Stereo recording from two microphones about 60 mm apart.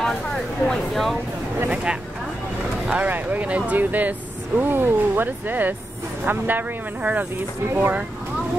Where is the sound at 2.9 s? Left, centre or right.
Right.